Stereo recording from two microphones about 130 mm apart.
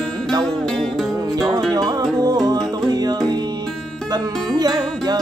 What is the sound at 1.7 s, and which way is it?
Music, 30° right (ahead or behind).